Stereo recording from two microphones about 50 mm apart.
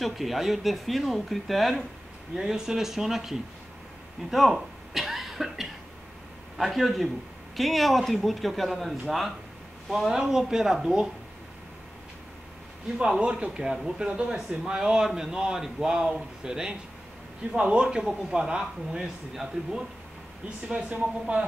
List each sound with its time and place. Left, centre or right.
0.0 s speech: centre
4.3 s a sound: centre
6.6 s speech: centre
13.0 s speech: right
13.5 s speech: centre
21.0 s speech: right